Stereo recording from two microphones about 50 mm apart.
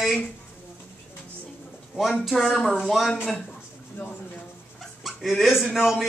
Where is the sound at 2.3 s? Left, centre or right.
Centre.